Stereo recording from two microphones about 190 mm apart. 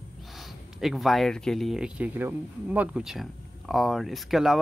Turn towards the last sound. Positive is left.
turn(degrees=0)  # may be behind; listen again after turning